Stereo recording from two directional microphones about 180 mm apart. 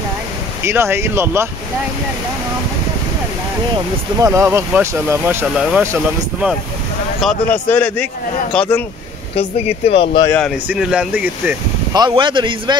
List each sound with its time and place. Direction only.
0.7 s speech: 15° right (ahead or behind)
4.2 s speech: 15° right (ahead or behind)
7.2 s speech: 5° left (ahead or behind)
9.3 s speech: 35° left (ahead or behind)
10.2 s speech: 10° left (ahead or behind)
10.7 s speech: 5° right (ahead or behind)
11.9 s speech: 25° right (ahead or behind)